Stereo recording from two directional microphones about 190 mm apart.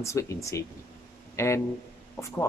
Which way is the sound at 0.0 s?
15° left (ahead or behind).